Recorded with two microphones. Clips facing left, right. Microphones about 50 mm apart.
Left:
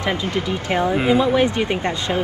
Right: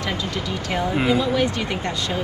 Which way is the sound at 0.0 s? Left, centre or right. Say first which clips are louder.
Left 4 dB; left.